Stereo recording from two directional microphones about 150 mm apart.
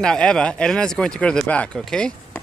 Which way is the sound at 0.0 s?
5° left (ahead or behind).